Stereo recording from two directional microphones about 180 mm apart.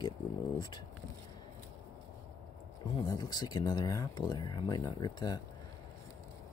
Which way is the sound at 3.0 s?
20° left (ahead or behind).